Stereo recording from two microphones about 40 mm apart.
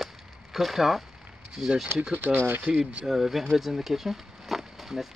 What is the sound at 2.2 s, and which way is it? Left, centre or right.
Speech, right.